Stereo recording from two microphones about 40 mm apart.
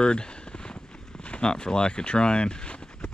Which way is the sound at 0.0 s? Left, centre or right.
Left.